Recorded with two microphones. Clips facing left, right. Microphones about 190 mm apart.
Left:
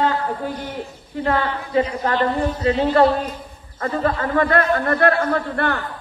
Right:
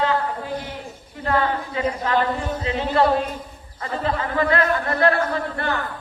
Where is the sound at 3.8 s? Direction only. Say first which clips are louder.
Left 4 dB; 50° left (ahead or behind).